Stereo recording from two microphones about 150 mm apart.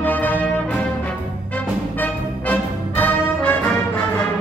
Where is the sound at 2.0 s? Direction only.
10° left (ahead or behind).